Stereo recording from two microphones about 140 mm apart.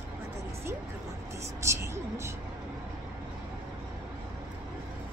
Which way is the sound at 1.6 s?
20° right (ahead or behind).